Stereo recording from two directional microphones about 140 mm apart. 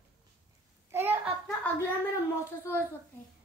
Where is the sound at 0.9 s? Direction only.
15° right (ahead or behind).